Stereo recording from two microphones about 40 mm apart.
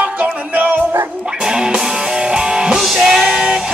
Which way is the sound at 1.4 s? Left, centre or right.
Centre.